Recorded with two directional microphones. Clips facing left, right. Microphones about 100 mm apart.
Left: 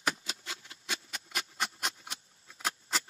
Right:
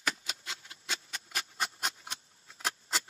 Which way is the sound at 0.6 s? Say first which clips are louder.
Even; 30° right (ahead or behind).